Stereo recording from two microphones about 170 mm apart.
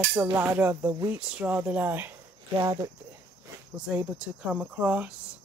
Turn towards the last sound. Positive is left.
turn(degrees=-10)  # may be behind; listen again after turning